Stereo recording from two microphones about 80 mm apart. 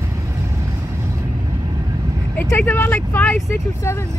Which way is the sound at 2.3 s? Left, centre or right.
Left.